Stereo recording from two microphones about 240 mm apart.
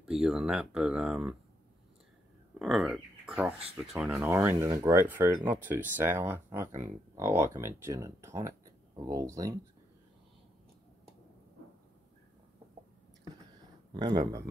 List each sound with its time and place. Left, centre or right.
0.0 s speech: centre
2.6 s speech: centre
13.9 s speech: centre